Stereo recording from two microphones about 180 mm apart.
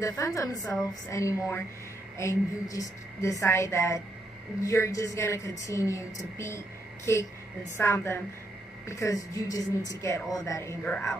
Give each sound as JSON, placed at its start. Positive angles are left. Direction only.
{"t": 0.0, "sound": "a woman's voice", "side_deg": 15}